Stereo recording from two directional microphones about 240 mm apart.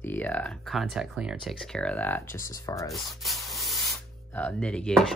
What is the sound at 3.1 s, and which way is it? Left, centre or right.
Speech, centre.